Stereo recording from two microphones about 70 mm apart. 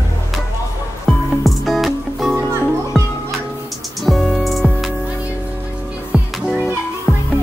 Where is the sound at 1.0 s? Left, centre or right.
Centre.